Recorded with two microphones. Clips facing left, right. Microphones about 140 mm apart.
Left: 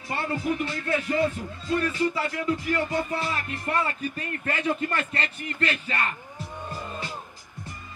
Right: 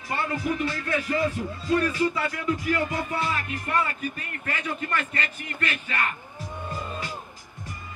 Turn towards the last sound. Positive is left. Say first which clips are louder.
# left 2 dB
turn(degrees=30)  # may be behind; listen again after turning